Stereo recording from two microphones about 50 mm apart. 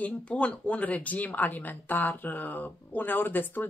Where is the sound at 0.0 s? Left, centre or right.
Left.